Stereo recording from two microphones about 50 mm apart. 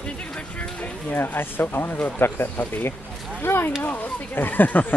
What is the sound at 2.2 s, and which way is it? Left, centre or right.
Speech, left.